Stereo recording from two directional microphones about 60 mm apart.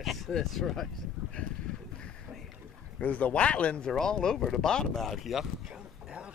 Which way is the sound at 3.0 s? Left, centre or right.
Left.